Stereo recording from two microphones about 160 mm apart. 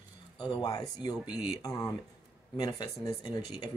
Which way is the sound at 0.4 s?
25° left (ahead or behind).